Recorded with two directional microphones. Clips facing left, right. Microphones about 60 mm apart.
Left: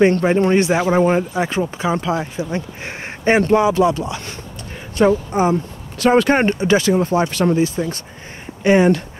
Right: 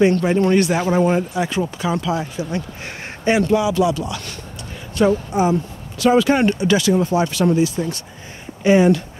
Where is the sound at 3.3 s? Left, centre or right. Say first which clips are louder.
Left 3 dB; left.